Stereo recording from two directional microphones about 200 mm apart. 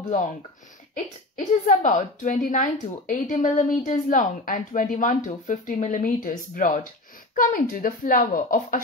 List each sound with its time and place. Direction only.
0.9 s a woman's voice: 40° left (ahead or behind)